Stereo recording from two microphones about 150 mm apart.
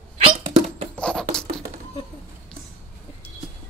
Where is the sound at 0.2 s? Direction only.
35° right (ahead or behind).